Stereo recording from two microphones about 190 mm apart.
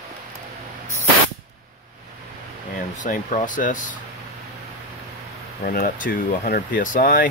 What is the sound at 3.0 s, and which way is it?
Speech, 45° left (ahead or behind).